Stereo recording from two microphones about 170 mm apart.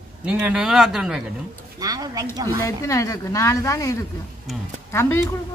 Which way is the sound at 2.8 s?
20° left (ahead or behind).